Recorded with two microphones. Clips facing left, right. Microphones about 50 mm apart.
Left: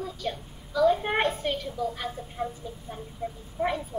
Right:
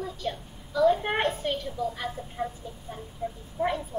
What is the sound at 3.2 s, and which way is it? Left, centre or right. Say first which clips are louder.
Speech: right 1 dB; left.